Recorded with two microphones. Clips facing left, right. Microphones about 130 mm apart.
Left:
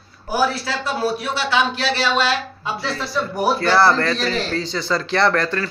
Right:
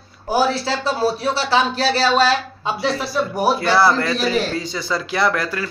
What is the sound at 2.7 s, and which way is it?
A man's voice, 15° right (ahead or behind).